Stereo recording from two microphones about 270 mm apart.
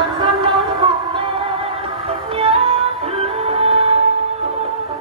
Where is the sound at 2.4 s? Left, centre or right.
Right.